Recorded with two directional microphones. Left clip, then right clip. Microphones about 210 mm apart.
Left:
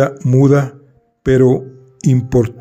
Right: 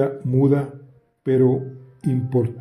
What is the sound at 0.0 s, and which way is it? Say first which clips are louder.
Speech: left 6 dB; 35° left (ahead or behind).